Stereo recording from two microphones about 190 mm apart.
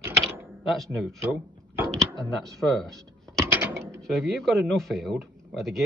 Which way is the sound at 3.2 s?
15° right (ahead or behind).